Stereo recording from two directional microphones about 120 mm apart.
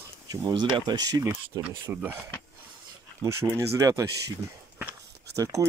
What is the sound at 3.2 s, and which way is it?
Speech, 25° right (ahead or behind).